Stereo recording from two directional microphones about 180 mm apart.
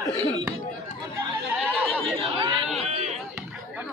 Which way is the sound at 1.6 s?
5° left (ahead or behind).